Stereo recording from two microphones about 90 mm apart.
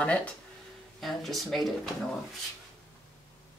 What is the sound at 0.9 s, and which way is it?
Speech, centre (ahead or behind).